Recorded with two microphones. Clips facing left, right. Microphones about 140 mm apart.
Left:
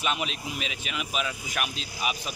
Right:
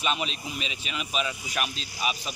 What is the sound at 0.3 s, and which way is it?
Speech, 65° left (ahead or behind).